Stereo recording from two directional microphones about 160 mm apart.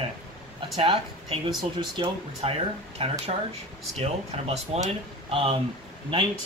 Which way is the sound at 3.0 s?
40° right (ahead or behind).